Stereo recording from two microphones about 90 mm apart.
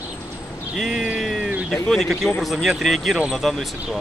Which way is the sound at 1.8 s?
5° left (ahead or behind).